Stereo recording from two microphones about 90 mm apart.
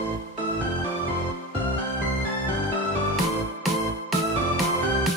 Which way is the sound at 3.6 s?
Centre (ahead or behind).